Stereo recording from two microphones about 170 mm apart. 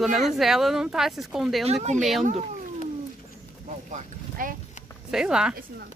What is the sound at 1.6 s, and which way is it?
Speech, 40° right (ahead or behind).